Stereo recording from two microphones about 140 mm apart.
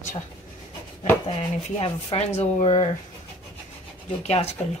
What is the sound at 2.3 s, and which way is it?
Speech, 50° left (ahead or behind).